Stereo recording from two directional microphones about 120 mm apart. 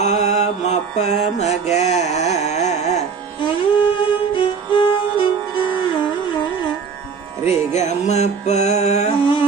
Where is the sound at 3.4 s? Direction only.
40° left (ahead or behind).